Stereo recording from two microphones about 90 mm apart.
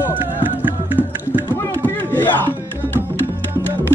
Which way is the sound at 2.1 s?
25° left (ahead or behind).